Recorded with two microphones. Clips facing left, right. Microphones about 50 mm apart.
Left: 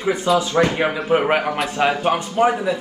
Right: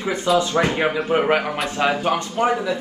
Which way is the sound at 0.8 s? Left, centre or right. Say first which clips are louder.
Left 1 dB; centre.